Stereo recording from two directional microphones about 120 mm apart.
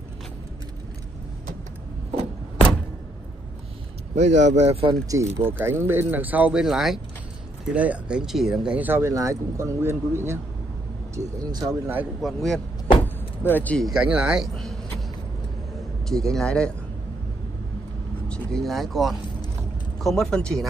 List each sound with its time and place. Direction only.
4.1 s speech: 70° right (ahead or behind)
5.0 s speech: 25° right (ahead or behind); by 8.7 s 5° right (ahead or behind)
8.7 s speech: 15° right (ahead or behind)
12.2 s speech: centre (ahead or behind)
13.0 s vehicle: 15° left (ahead or behind)
13.8 s speech: 10° right (ahead or behind)
16.1 s speech: 5° left (ahead or behind)
18.3 s speech: 5° left (ahead or behind)